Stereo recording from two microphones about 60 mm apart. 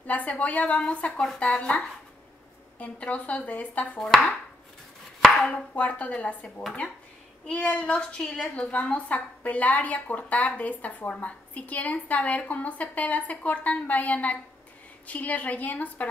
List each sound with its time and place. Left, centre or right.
0.0 s a sound: left
0.4 s a woman's voice: left
4.0 s speech: centre
5.2 s chopping: centre
5.5 s a woman's voice: left
6.4 s speech: centre
8.5 s a woman's voice: left